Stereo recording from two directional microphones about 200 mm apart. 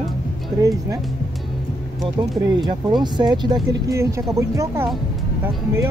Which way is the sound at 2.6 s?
20° right (ahead or behind).